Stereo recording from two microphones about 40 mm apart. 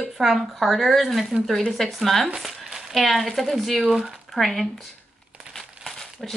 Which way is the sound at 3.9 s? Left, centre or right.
Centre.